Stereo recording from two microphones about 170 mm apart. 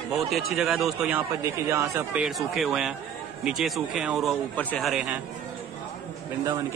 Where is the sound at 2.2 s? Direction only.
Centre (ahead or behind).